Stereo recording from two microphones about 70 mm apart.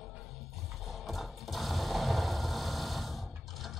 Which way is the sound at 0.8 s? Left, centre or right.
Centre.